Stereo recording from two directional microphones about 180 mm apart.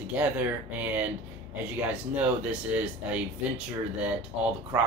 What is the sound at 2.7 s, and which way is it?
Speech, 5° right (ahead or behind).